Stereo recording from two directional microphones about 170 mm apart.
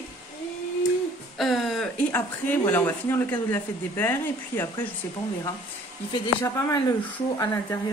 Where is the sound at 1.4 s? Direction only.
Centre (ahead or behind).